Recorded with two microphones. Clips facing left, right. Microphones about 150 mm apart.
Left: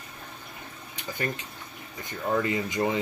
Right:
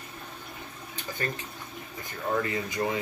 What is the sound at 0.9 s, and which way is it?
Water tap, 15° left (ahead or behind).